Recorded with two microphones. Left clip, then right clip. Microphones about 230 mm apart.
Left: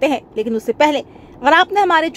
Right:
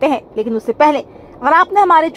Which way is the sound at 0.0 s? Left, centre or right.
Centre.